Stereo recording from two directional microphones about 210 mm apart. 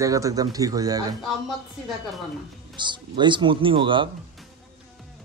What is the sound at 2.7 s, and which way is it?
A man's voice, 20° right (ahead or behind).